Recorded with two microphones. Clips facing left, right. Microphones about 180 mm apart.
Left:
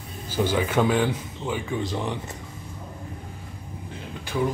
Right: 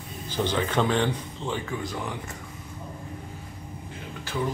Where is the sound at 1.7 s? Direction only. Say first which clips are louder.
Left 4 dB; 25° left (ahead or behind).